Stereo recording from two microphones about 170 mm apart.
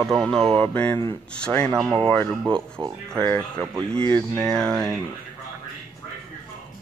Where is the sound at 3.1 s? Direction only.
10° left (ahead or behind).